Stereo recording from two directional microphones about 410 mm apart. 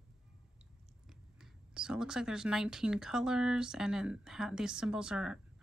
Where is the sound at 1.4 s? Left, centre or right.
Centre.